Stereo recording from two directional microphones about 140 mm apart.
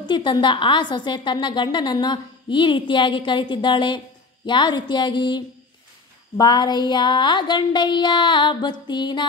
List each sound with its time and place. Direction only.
0.0 s a woman's voice: 35° left (ahead or behind)